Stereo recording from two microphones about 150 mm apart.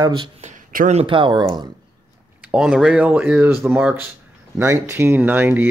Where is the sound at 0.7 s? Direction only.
65° right (ahead or behind).